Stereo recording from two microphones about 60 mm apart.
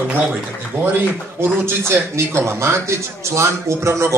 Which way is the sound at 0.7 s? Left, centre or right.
Right.